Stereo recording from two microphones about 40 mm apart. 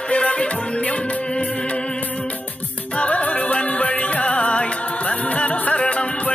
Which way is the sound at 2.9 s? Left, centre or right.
Left.